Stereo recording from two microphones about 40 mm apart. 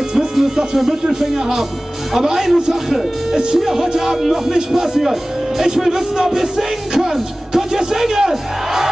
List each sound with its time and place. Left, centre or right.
0.1 s speech: centre